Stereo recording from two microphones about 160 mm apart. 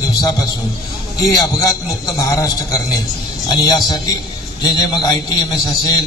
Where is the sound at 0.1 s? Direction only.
25° left (ahead or behind).